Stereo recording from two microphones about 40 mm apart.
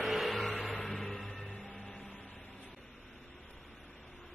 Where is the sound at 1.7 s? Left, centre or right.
Left.